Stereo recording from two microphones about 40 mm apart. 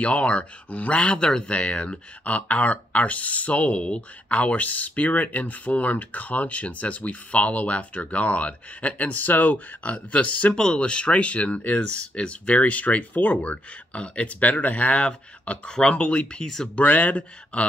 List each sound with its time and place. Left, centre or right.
0.0 s speech: left
10.5 s speech: centre
16.7 s speech: left